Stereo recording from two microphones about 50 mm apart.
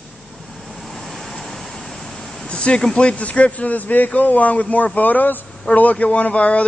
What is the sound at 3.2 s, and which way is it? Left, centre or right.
Speech, left.